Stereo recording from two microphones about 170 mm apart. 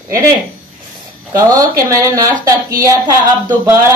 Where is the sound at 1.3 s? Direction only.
20° right (ahead or behind).